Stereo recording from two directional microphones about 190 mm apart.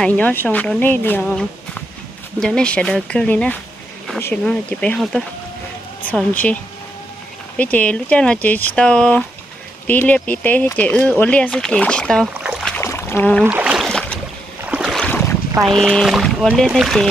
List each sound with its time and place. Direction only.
0.0 s speech: 10° left (ahead or behind)
2.4 s speech: 5° left (ahead or behind)
12.4 s boat: centre (ahead or behind)
12.8 s a sound: 15° left (ahead or behind)
13.5 s a sound: 5° right (ahead or behind)
14.7 s boat: 5° right (ahead or behind)
15.0 s boat: 10° left (ahead or behind)
15.5 s speech: 20° right (ahead or behind)
15.8 s speech: centre (ahead or behind)